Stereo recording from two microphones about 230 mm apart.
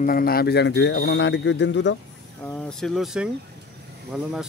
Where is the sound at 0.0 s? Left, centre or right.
Left.